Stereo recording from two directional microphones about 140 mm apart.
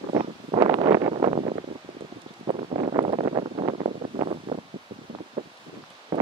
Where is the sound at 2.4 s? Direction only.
50° right (ahead or behind).